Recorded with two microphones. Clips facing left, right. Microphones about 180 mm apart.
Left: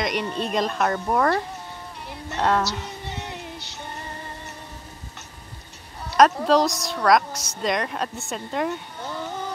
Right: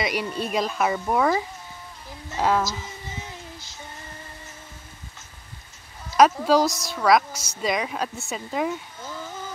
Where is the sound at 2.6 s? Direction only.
70° left (ahead or behind).